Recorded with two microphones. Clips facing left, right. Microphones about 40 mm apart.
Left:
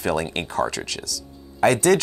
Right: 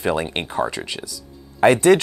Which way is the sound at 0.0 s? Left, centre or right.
Right.